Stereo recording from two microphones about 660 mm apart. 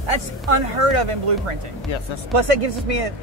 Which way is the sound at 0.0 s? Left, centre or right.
Right.